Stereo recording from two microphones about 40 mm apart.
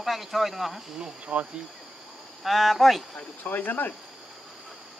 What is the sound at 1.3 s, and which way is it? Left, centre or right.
Speech, right.